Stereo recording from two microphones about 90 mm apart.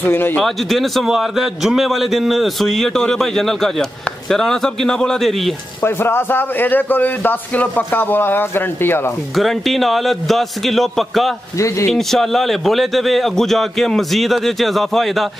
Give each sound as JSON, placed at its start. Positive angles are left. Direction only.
{"t": 0.0, "sound": "a man's voice", "side_deg": 20}
{"t": 0.4, "sound": "a man's voice", "side_deg": 5}
{"t": 5.8, "sound": "a man's voice", "side_deg": 25}
{"t": 9.3, "sound": "a man's voice", "side_deg": 0}
{"t": 11.5, "sound": "a man's voice", "side_deg": 35}
{"t": 11.9, "sound": "a man's voice", "side_deg": 5}